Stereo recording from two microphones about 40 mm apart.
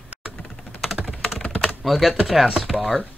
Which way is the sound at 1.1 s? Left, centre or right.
Centre.